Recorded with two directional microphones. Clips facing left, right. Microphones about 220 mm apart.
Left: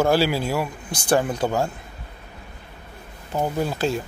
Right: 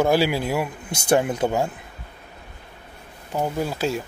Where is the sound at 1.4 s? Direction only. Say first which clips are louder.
Right 1 dB; 10° right (ahead or behind).